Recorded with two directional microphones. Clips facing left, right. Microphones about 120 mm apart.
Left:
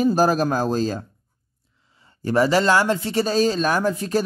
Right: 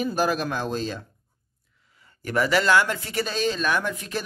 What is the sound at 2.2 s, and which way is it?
Speech, 35° left (ahead or behind).